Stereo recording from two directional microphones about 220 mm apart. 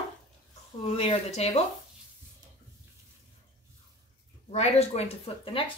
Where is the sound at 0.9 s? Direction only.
25° left (ahead or behind).